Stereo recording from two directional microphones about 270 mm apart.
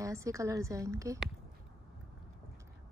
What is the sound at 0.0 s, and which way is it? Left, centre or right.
A woman's voice, centre.